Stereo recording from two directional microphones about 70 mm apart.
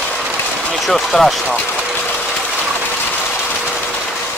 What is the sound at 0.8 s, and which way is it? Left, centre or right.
Speech, centre.